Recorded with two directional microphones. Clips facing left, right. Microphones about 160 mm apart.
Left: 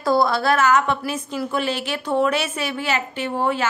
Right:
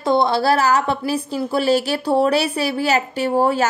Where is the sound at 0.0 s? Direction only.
25° right (ahead or behind).